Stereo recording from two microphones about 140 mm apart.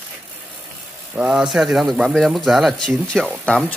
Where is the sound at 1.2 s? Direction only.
5° right (ahead or behind).